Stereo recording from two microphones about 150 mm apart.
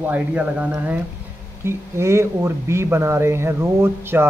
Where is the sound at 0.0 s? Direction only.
10° right (ahead or behind).